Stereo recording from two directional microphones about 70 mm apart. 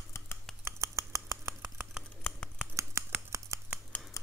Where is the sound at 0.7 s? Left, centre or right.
Right.